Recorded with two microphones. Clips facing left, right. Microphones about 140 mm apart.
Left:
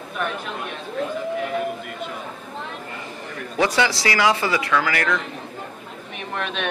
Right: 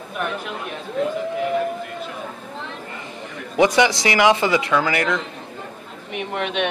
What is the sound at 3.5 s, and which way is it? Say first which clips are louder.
A man's voice: right 4 dB; 20° right (ahead or behind).